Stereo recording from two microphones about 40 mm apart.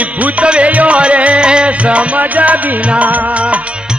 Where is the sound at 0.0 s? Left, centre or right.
Right.